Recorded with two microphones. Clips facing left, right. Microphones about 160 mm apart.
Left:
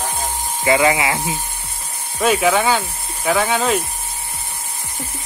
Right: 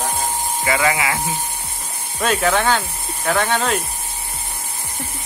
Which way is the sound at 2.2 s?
5° left (ahead or behind).